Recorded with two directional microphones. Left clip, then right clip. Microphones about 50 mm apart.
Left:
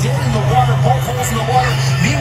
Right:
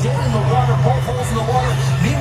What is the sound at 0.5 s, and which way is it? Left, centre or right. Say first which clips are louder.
Speech: left 5 dB; centre.